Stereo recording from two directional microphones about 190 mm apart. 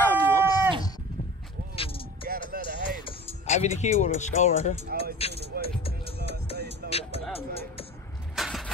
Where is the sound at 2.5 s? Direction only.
55° right (ahead or behind).